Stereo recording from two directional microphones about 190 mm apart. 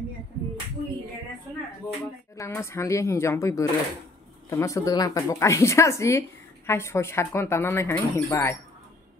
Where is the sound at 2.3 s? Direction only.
15° left (ahead or behind).